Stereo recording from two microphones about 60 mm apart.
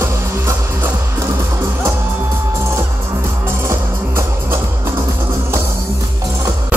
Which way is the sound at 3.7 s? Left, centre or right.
Right.